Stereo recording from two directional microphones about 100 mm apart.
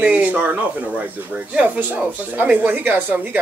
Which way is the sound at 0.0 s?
15° right (ahead or behind).